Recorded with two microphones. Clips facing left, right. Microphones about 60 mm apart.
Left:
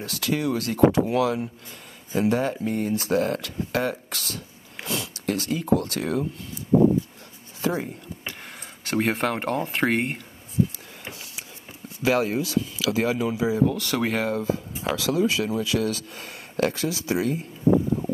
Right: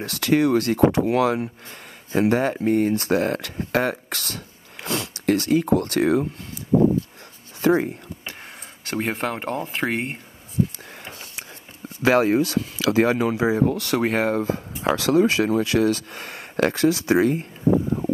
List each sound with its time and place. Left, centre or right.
0.0 s speech: right
7.6 s speech: right
8.8 s speech: centre
12.0 s speech: right
15.0 s speech: right